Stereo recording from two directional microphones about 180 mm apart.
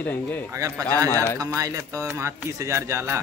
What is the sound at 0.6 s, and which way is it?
Speech, 20° right (ahead or behind).